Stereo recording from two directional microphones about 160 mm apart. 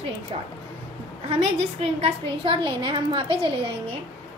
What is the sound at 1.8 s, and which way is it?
A woman's voice, 35° right (ahead or behind).